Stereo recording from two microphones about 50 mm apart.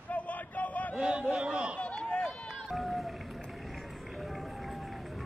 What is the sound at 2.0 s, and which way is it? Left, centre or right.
Run, centre.